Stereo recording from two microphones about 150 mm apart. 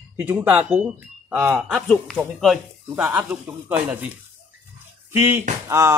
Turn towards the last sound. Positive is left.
turn(degrees=-20)  # may be behind; listen again after turning